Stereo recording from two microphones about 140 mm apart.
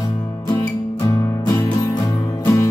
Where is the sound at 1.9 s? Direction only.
25° left (ahead or behind).